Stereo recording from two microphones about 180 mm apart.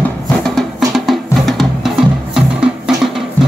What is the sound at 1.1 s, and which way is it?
Music, centre (ahead or behind).